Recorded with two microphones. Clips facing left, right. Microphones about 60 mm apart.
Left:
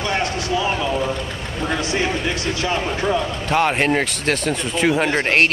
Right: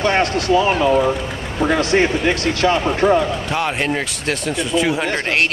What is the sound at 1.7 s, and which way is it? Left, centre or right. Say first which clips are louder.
Speech: right 6 dB; right.